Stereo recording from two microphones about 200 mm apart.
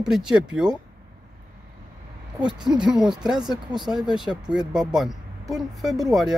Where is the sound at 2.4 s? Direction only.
20° right (ahead or behind).